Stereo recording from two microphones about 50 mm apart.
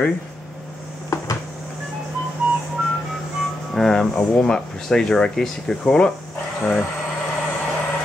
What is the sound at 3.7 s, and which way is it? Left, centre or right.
Speech, centre.